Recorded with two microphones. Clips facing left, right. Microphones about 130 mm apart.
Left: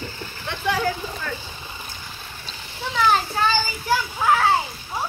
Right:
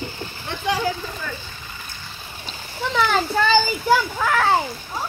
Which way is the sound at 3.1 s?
85° right.